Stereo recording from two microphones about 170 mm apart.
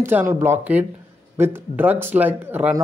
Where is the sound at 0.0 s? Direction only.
10° right (ahead or behind).